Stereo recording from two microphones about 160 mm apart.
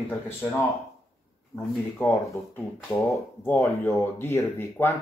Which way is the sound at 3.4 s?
15° left (ahead or behind).